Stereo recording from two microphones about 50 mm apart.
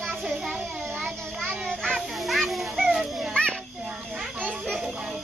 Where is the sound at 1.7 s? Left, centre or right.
Centre.